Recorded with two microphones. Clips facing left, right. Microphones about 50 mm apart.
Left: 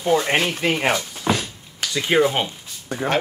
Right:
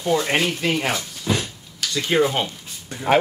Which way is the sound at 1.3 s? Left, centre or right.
Left.